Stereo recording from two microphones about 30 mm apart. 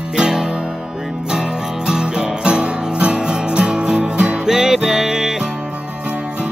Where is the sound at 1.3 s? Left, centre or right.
Right.